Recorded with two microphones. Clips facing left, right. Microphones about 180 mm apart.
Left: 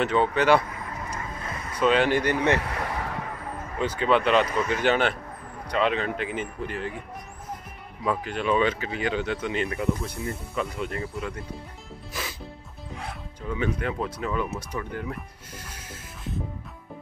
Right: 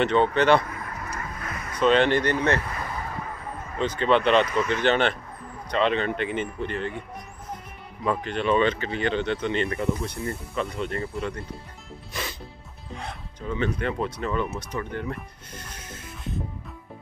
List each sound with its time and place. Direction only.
0.0 s speech: 5° left (ahead or behind)
1.8 s speech: 5° left (ahead or behind)
2.7 s vehicle: 75° left (ahead or behind)
3.8 s speech: 10° left (ahead or behind)
8.0 s speech: 5° left (ahead or behind)
12.1 s music: 5° left (ahead or behind)
12.9 s speech: 5° left (ahead or behind)